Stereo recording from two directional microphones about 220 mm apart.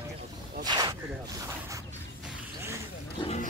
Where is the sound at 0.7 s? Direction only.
20° right (ahead or behind).